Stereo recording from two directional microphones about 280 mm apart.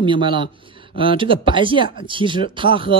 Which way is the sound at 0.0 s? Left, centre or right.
Centre.